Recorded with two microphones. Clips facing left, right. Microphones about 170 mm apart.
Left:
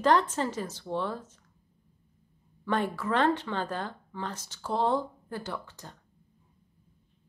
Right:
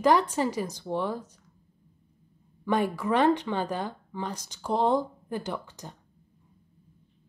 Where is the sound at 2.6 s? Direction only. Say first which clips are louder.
Right 3 dB; 15° right (ahead or behind).